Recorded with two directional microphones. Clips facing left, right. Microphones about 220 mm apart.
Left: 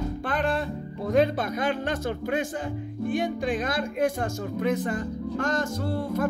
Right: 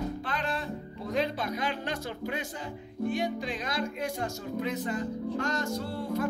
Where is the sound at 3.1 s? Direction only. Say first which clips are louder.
Left 6 dB; 50° left (ahead or behind).